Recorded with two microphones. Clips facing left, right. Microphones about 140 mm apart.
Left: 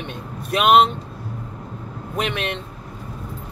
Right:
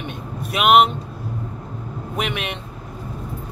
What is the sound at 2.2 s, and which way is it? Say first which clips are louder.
Speech: left 2 dB; 10° right (ahead or behind).